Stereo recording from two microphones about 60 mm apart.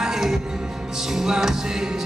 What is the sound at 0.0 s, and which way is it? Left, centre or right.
Music, centre.